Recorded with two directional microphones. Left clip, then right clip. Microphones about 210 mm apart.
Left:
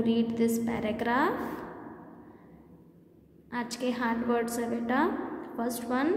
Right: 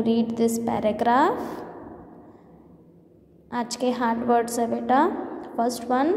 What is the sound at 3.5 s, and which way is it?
A woman's voice, 25° right (ahead or behind).